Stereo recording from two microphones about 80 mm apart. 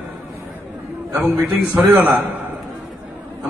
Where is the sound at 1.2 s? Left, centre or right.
Right.